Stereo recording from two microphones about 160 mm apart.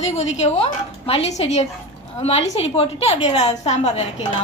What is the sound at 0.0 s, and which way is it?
A woman's voice, 45° left (ahead or behind).